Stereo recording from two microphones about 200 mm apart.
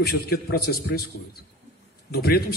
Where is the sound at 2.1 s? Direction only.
50° left (ahead or behind).